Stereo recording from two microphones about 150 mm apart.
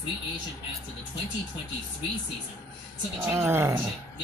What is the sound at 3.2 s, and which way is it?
Speech, 15° right (ahead or behind).